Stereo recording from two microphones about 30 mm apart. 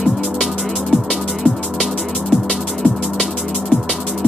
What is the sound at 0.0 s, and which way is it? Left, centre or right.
Music, centre.